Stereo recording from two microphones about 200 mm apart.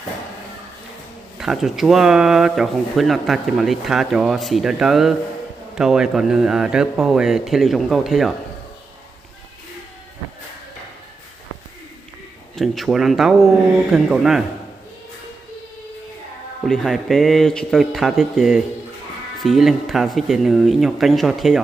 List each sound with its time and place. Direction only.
1.4 s speech: centre (ahead or behind)
12.5 s speech: centre (ahead or behind)
16.6 s speech: centre (ahead or behind)